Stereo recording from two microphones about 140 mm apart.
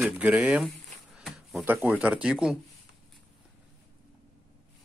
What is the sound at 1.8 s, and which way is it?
Speech, 10° right (ahead or behind).